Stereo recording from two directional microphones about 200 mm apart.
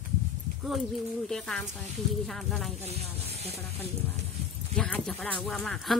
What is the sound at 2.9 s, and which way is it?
Speech, 30° right (ahead or behind).